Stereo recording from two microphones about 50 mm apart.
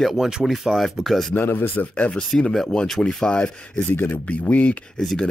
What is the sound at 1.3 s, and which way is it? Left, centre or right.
Speech, left.